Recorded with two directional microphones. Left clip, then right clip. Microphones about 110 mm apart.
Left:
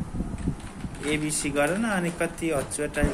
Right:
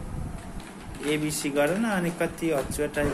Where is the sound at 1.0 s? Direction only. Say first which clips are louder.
Even; centre (ahead or behind).